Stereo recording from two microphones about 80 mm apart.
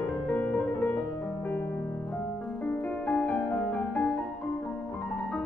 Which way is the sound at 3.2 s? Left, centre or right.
Centre.